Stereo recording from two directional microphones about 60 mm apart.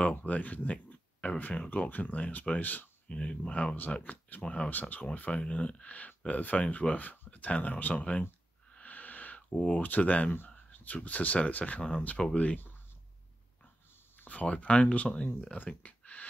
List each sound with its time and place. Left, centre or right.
0.1 s speech: left
3.1 s speech: centre
3.7 s speech: left
8.7 s a sound: left
11.0 s speech: left
14.2 s speech: left